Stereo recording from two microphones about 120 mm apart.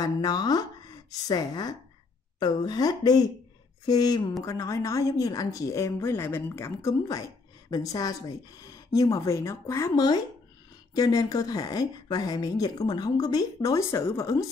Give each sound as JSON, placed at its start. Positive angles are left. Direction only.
{"t": 0.0, "sound": "a woman's voice", "side_deg": 35}